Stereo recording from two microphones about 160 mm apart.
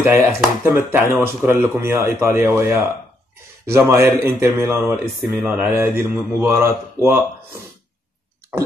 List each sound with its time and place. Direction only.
0.0 s speech: 15° right (ahead or behind)
5.3 s speech: 5° right (ahead or behind)
5.8 s speech: 15° right (ahead or behind)